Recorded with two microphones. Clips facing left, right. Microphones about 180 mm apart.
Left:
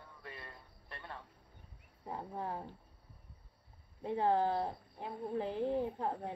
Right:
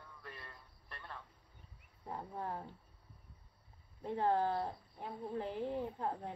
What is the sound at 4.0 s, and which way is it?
Speech, 10° left (ahead or behind).